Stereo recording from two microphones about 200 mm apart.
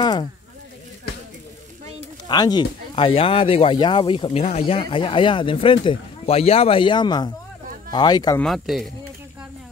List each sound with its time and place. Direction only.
0.0 s a sound: 20° left (ahead or behind)
2.0 s speech: 20° left (ahead or behind)
8.4 s speech: centre (ahead or behind)